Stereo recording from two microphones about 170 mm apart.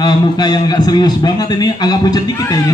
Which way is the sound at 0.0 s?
25° left (ahead or behind).